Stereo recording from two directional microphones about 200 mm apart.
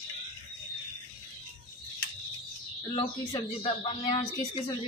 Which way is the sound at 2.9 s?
25° left (ahead or behind).